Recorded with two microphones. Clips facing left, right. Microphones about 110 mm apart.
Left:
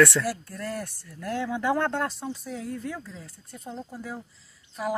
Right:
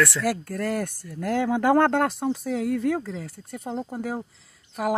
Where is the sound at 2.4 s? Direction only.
75° right (ahead or behind).